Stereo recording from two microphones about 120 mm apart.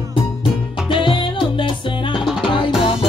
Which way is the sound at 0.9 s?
45° left (ahead or behind).